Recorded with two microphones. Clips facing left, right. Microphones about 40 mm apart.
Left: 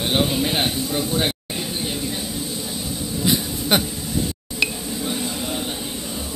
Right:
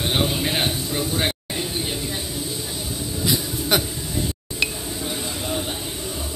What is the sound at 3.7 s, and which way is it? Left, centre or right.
Speech, left.